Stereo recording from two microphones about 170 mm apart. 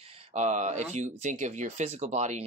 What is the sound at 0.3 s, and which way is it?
Speech, 45° right (ahead or behind).